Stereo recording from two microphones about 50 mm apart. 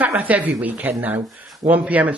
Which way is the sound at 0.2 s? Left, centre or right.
Right.